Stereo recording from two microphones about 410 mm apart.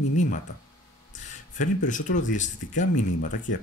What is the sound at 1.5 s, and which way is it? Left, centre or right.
Speech, centre.